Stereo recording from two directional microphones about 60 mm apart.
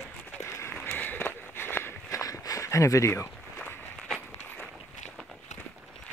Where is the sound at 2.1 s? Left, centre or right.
Left.